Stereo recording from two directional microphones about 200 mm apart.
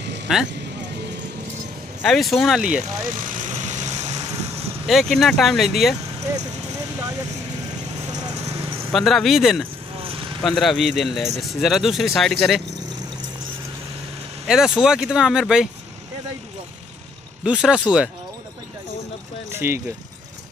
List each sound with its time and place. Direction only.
0.3 s speech: centre (ahead or behind)
2.0 s speech: centre (ahead or behind)
2.8 s vehicle: 35° right (ahead or behind)
4.8 s speech: centre (ahead or behind)
8.1 s vehicle: 20° right (ahead or behind)
8.9 s speech: centre (ahead or behind)
10.0 s vehicle: 25° right (ahead or behind)
10.4 s speech: centre (ahead or behind)
14.5 s speech: 5° right (ahead or behind)
17.4 s speech: 5° right (ahead or behind)
19.5 s speech: 10° right (ahead or behind)